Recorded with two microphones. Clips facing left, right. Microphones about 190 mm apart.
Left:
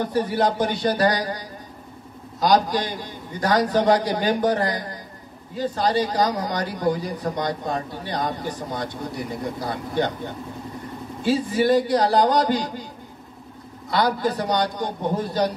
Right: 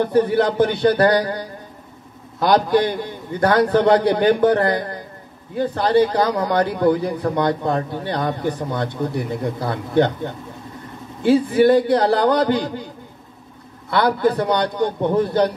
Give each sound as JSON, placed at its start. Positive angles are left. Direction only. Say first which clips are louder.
{"t": 0.0, "sound": "a man's voice", "louder": "right 5 dB", "side_deg": -55}
{"t": 11.2, "sound": "a man's voice", "louder": "right 6 dB", "side_deg": -60}
{"t": 13.8, "sound": "a man's voice", "louder": "right 4 dB", "side_deg": -60}